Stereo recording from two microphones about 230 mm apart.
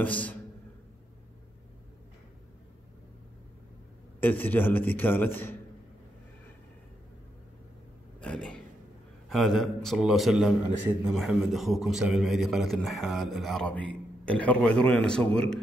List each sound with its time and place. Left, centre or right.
0.0 s a man's voice: centre
4.2 s a man's voice: centre
8.2 s a sound: centre
9.3 s a man's voice: centre